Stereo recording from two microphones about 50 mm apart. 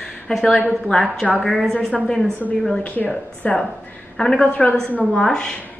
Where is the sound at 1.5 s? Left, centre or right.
Centre.